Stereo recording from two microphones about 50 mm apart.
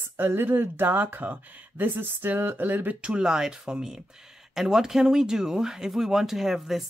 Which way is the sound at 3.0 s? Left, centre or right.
Centre.